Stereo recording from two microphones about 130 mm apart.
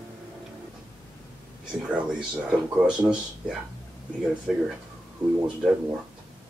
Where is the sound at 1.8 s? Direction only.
10° right (ahead or behind).